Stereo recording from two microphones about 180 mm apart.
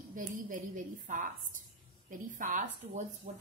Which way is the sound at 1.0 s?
45° right (ahead or behind).